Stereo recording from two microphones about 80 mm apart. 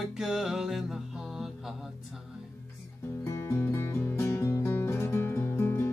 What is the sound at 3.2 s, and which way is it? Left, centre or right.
Music, left.